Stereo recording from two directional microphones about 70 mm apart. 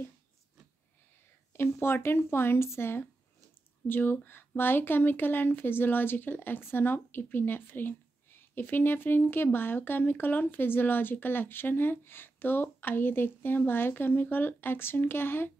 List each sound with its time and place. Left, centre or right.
1.5 s speech: left